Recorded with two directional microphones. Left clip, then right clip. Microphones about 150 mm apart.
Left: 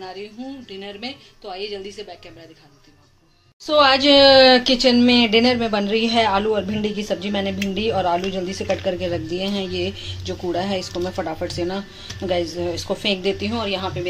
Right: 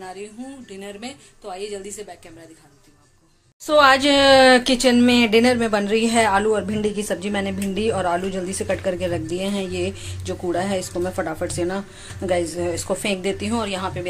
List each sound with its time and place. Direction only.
0.7 s speech: 15° right (ahead or behind)
3.6 s speech: 10° right (ahead or behind)